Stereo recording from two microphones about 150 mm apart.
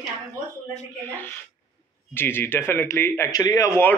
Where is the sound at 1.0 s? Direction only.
15° left (ahead or behind).